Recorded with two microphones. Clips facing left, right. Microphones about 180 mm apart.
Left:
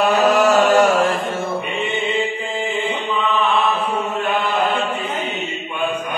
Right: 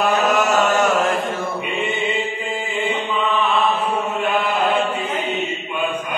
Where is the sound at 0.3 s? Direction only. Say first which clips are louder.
Left 4 dB; 35° left (ahead or behind).